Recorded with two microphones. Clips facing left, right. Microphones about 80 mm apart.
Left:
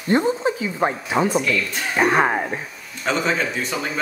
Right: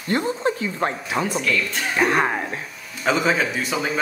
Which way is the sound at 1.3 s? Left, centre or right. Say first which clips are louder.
Left 2 dB; centre.